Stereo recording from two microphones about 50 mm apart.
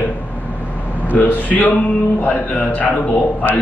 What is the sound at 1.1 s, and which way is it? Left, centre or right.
A man's voice, left.